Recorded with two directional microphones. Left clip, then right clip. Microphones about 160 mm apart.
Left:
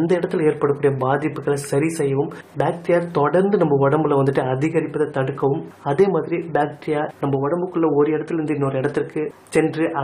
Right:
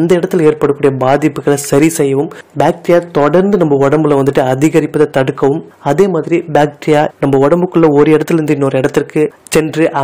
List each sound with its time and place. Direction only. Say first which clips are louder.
0.0 s a man's voice: right 9 dB; 45° right (ahead or behind)
8.5 s a man's voice: right 9 dB; 45° right (ahead or behind)